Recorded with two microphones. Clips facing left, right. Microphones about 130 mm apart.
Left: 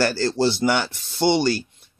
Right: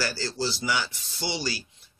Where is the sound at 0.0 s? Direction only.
60° left (ahead or behind).